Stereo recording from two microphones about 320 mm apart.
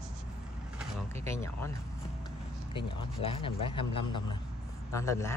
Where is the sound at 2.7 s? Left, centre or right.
Centre.